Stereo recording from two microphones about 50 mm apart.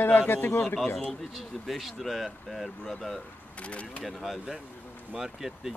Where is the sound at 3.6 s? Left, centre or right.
Left.